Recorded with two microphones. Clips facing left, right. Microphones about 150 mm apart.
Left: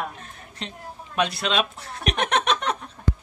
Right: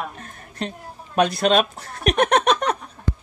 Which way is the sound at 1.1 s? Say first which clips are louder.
Right 6 dB; 45° right (ahead or behind).